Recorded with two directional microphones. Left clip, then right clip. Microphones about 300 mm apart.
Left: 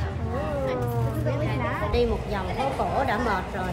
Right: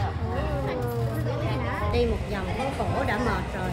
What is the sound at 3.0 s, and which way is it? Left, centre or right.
Speech, centre.